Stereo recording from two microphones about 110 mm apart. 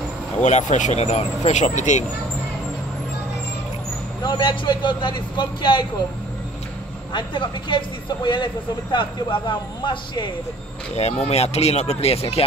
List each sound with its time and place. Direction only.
0.4 s speech: 90° left
4.2 s speech: 45° left (ahead or behind)
7.1 s speech: 45° left (ahead or behind)
11.2 s speech: 75° left (ahead or behind)